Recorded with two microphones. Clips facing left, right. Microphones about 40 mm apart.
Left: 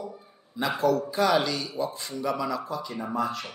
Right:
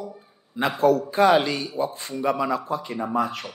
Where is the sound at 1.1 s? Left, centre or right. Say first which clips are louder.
Right 5 dB; right.